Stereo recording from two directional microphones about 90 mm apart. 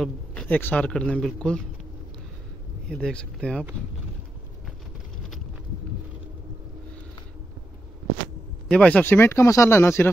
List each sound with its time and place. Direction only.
0.3 s speech: 15° left (ahead or behind)
2.9 s speech: 10° left (ahead or behind)
8.6 s speech: 15° left (ahead or behind)
9.0 s speech: 25° left (ahead or behind)